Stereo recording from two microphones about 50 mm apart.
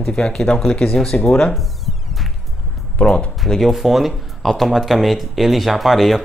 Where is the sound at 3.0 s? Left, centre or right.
Left.